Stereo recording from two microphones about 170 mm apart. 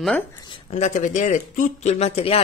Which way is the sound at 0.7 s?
45° left (ahead or behind).